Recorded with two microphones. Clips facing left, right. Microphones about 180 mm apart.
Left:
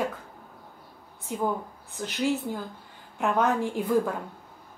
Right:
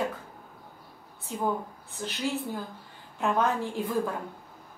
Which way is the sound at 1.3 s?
15° left (ahead or behind).